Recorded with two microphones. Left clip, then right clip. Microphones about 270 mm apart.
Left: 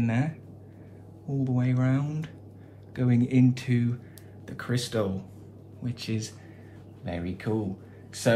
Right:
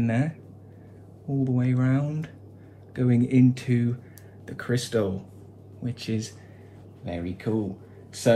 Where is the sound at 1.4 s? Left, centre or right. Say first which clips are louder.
Right 2 dB; centre.